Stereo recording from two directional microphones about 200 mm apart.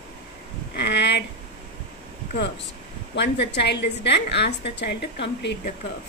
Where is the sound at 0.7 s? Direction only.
60° left (ahead or behind).